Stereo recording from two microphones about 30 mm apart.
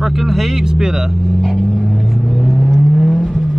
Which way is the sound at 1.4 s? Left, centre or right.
Centre.